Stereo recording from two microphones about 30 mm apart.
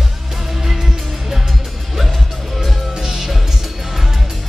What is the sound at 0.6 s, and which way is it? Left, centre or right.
Music, centre.